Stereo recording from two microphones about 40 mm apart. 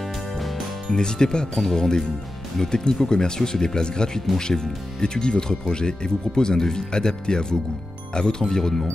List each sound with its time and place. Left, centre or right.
0.8 s speech: centre